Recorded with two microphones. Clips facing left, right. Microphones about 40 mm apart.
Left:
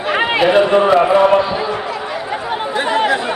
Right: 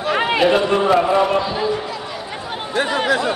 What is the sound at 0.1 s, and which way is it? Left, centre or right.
A man's voice, left.